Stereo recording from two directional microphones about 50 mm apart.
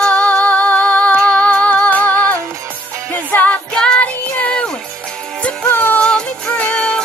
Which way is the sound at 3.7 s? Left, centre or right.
Left.